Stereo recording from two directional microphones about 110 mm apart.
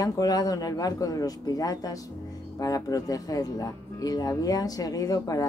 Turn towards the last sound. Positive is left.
turn(degrees=35)  # may be behind; listen again after turning